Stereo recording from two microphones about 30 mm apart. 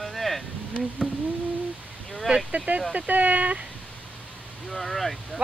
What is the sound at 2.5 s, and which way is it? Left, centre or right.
Speech, right.